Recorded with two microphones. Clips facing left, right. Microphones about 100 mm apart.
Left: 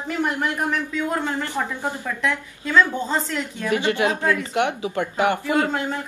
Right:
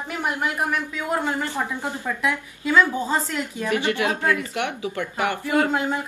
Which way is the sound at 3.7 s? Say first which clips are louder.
Left 2 dB; 25° left (ahead or behind).